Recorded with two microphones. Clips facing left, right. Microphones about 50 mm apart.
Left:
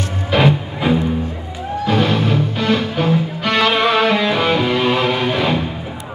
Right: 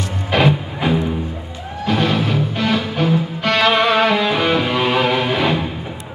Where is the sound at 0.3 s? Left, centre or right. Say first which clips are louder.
Left 1 dB; centre.